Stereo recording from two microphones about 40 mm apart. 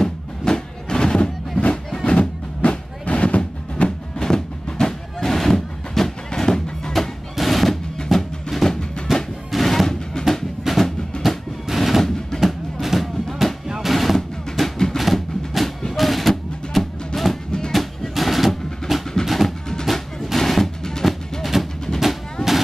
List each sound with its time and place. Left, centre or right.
0.0 s music: centre
4.2 s music: centre
10.2 s a sound: centre
10.6 s music: centre
11.2 s a sound: centre
12.3 s music: centre
12.8 s music: centre
14.1 s drum: centre
15.0 s music: centre
17.5 s music: centre
17.7 s music: centre
21.4 s music: centre
22.0 s a sound: centre